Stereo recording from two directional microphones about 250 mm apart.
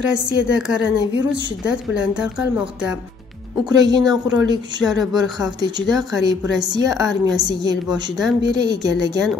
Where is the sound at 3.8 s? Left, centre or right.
Centre.